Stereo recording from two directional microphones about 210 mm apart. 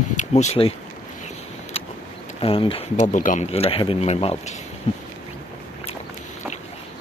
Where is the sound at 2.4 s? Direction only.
25° left (ahead or behind).